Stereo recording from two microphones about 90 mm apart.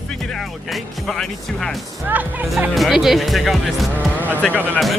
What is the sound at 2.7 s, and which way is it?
Speech, centre (ahead or behind).